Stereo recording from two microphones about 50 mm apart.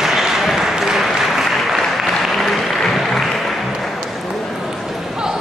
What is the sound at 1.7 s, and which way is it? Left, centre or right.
Applause, centre.